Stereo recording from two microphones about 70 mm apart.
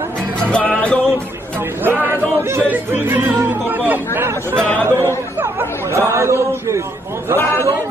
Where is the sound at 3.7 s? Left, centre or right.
Right.